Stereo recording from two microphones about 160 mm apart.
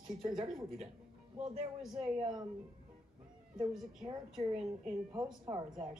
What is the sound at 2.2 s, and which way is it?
Speech, 25° right (ahead or behind).